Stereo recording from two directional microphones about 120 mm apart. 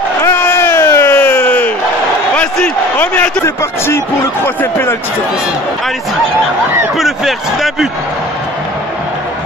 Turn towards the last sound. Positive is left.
turn(degrees=0)  # may be behind; listen again after turning